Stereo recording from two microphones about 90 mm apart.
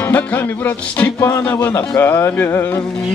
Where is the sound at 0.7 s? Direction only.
20° left (ahead or behind).